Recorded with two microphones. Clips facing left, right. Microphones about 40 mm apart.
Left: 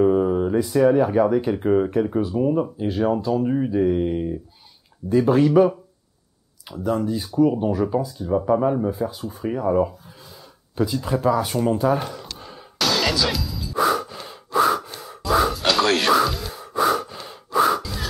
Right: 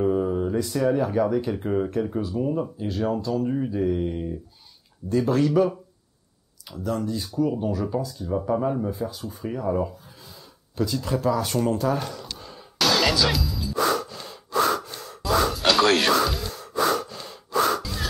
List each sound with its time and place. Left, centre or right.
0.0 s a sound: centre
0.7 s speech: centre
12.4 s cough: centre
12.7 s music: centre
13.7 s breathing: centre